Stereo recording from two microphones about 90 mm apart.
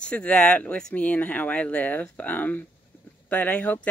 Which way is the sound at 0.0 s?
10° left (ahead or behind).